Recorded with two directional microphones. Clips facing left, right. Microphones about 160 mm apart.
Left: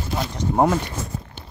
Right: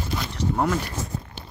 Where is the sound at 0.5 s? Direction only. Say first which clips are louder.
Left 6 dB; 30° left (ahead or behind).